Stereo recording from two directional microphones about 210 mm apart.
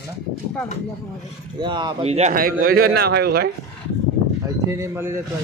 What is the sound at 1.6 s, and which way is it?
Speech, 20° right (ahead or behind).